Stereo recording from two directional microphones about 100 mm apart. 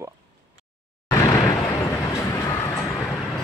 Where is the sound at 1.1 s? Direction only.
35° left (ahead or behind).